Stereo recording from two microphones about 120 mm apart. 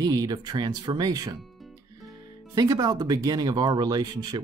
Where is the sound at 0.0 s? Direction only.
30° right (ahead or behind).